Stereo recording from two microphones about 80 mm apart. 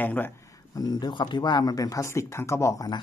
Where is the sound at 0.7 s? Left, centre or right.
Left.